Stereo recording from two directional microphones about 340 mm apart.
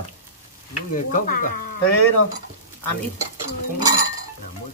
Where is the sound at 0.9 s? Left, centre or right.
Left.